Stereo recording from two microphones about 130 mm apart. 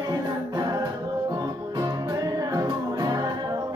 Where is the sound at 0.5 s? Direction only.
30° right (ahead or behind).